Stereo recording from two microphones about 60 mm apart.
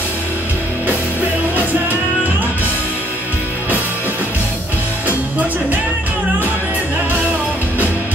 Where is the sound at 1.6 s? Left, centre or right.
Right.